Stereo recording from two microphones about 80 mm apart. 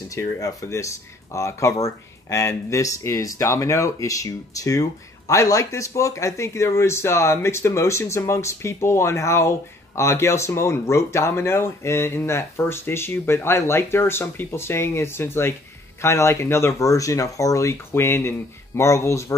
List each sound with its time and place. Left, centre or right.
0.1 s speech: left